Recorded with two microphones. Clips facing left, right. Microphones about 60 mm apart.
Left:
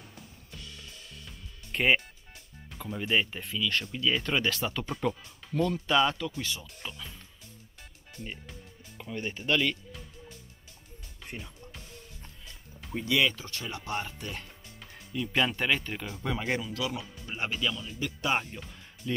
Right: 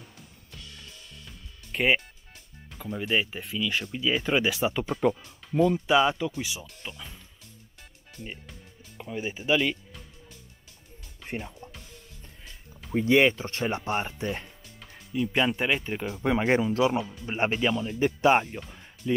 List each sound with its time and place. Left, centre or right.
1.2 s music: centre
2.7 s speech: centre
8.2 s speech: centre
11.2 s music: right
12.9 s speech: right
15.1 s speech: centre
16.3 s speech: right
19.0 s speech: centre